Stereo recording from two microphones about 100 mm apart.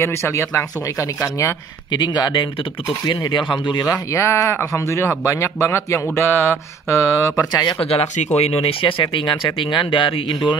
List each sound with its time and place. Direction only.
0.0 s speech: 25° left (ahead or behind)
1.9 s speech: 50° left (ahead or behind)
3.8 s speech: 30° left (ahead or behind)
7.8 s speech: 90° left; by 10.6 s 55° left (ahead or behind)